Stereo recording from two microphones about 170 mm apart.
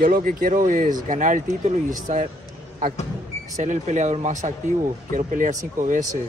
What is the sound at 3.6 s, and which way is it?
A man's voice, 45° right (ahead or behind).